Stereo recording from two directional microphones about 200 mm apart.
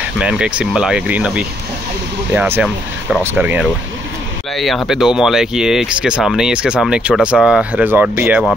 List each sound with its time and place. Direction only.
0.2 s speech: 5° right (ahead or behind)